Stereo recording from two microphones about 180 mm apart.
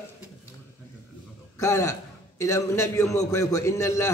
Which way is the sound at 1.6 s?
15° left (ahead or behind).